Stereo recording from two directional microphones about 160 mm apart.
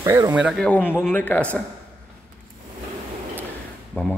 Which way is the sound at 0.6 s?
10° left (ahead or behind).